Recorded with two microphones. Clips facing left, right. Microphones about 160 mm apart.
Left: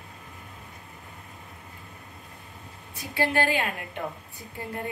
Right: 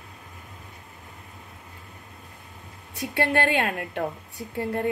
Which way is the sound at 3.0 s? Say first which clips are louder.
Right 2 dB; 60° right (ahead or behind).